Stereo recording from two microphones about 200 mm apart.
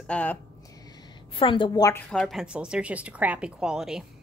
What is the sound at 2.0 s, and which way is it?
A woman's voice, centre (ahead or behind).